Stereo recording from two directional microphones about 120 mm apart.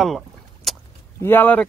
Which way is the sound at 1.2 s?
15° left (ahead or behind).